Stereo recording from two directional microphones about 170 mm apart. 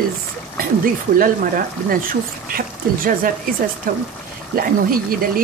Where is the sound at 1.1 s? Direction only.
55° right (ahead or behind).